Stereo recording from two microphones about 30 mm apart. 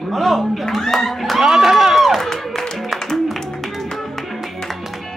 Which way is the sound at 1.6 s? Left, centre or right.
Centre.